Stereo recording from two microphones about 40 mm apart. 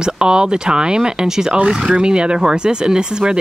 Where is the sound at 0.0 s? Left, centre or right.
Right.